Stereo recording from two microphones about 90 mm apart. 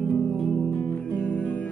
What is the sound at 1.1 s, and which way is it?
Music, 15° left (ahead or behind).